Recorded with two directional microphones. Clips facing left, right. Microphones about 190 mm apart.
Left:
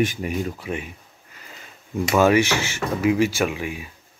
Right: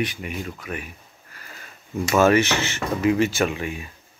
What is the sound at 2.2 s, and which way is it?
Speech, 10° left (ahead or behind).